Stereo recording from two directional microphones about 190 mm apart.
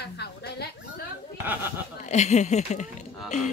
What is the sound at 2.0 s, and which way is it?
Speech, 35° left (ahead or behind).